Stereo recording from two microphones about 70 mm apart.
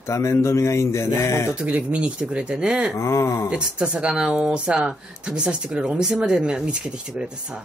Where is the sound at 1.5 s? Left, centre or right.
Centre.